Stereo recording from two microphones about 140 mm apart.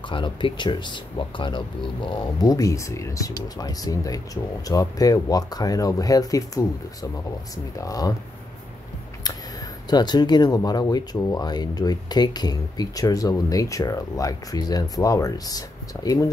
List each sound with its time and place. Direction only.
0.1 s speech: 35° left (ahead or behind)
9.8 s speech: 30° left (ahead or behind)